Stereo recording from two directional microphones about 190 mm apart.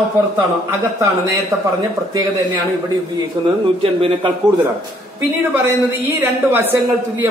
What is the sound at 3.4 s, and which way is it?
Speech, 20° right (ahead or behind).